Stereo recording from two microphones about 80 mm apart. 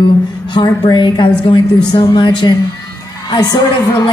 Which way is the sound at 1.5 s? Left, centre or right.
Left.